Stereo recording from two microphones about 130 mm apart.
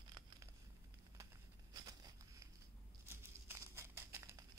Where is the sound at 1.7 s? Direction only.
30° right (ahead or behind).